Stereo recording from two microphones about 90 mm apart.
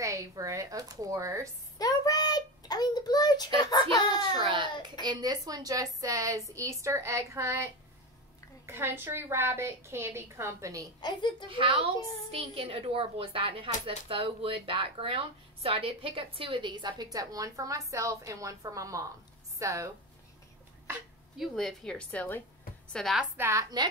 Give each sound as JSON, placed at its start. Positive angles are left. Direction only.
{"t": 0.0, "sound": "speech", "side_deg": -35}
{"t": 1.8, "sound": "a sound", "side_deg": 45}
{"t": 3.9, "sound": "a child's voice", "side_deg": 50}
{"t": 4.5, "sound": "a child's voice", "side_deg": -60}
{"t": 5.0, "sound": "a woman's voice", "side_deg": -50}
{"t": 11.0, "sound": "speech", "side_deg": 55}
{"t": 11.4, "sound": "a woman's voice", "side_deg": -75}
{"t": 12.3, "sound": "a woman's voice", "side_deg": -90}
{"t": 21.4, "sound": "speech", "side_deg": 5}
{"t": 22.9, "sound": "a woman's voice", "side_deg": 0}
{"t": 23.3, "sound": "a woman's voice", "side_deg": -30}